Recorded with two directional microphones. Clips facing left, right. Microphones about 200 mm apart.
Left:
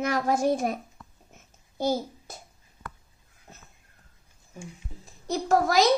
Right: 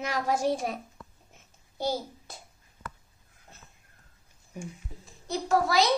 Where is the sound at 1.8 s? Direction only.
45° left (ahead or behind).